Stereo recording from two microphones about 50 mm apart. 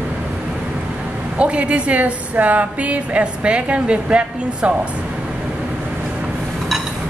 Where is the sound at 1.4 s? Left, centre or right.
Right.